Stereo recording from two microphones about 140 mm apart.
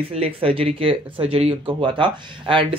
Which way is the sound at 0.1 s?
45° right (ahead or behind).